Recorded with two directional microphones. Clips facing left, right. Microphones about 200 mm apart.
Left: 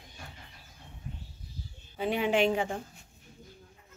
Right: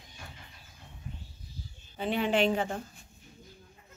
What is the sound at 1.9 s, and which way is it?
Speech, 10° left (ahead or behind).